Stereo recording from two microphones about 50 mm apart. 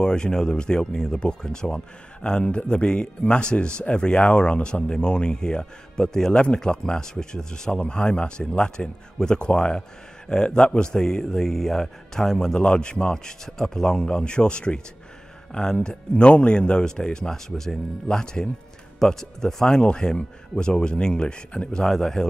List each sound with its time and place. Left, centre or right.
0.0 s speech: centre
12.5 s speech: left